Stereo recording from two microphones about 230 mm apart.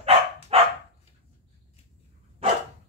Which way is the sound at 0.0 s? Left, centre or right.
Right.